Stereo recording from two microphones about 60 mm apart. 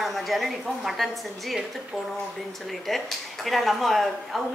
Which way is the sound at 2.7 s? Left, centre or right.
Centre.